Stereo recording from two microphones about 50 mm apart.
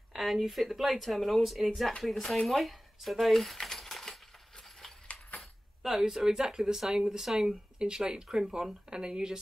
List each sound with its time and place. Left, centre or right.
0.1 s speech: centre
5.0 s a sound: left
5.8 s speech: centre